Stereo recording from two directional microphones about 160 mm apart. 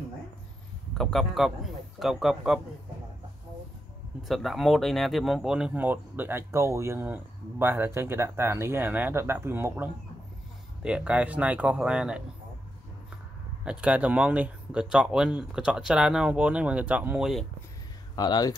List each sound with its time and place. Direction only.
0.9 s a man's voice: centre (ahead or behind)
4.2 s speech: centre (ahead or behind)
13.7 s speech: 10° right (ahead or behind)
18.1 s speech: 25° left (ahead or behind)